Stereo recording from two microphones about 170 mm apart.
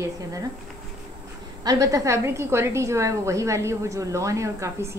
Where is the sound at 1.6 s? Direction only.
20° right (ahead or behind).